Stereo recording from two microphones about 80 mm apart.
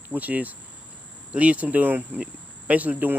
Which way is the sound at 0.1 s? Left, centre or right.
Centre.